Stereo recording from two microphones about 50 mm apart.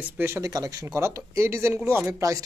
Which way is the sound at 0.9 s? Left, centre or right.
Right.